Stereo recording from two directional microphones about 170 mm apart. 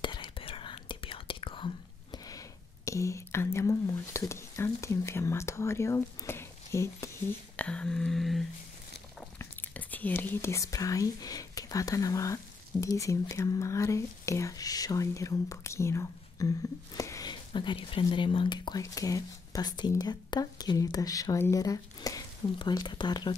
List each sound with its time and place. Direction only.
0.0 s whispering: 25° left (ahead or behind)
2.2 s whispering: 20° left (ahead or behind)
7.5 s a sound: 5° left (ahead or behind)
9.4 s whispering: 10° left (ahead or behind); by 23.3 s 25° left (ahead or behind)